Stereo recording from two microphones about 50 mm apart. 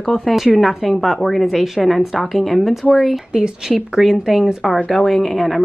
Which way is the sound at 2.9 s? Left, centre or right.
Centre.